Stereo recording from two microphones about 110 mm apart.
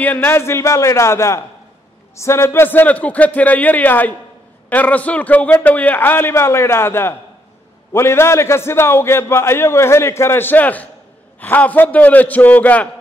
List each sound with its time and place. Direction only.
0.0 s a man's voice: 15° left (ahead or behind)